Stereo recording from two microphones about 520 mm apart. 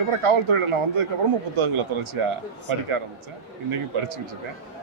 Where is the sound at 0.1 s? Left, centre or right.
Right.